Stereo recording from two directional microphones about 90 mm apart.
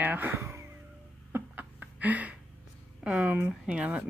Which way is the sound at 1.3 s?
20° right (ahead or behind).